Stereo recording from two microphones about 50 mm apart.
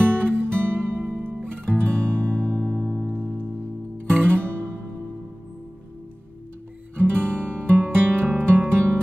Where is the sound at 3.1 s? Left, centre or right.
Centre.